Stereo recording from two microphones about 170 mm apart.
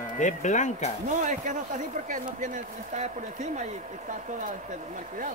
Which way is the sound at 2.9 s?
45° right (ahead or behind).